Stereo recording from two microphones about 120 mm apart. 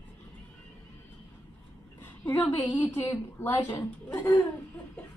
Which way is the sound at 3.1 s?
20° left (ahead or behind).